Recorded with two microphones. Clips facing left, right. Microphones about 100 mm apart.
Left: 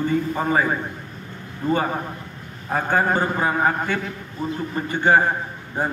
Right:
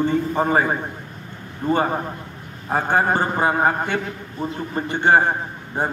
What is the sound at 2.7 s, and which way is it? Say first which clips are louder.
Speech: right 1 dB; 25° right (ahead or behind).